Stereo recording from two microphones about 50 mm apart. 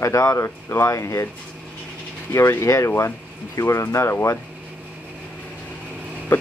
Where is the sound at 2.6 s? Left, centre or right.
Left.